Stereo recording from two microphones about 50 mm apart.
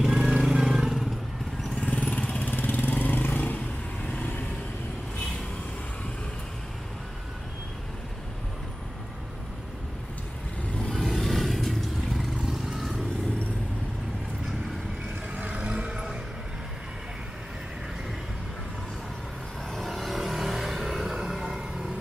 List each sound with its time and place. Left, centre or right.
0.0 s vehicle: centre
1.8 s vehicle: left
2.5 s vehicle: left
10.8 s vehicle: centre
12.2 s vehicle: centre
15.3 s vehicle: right
19.7 s vehicle: centre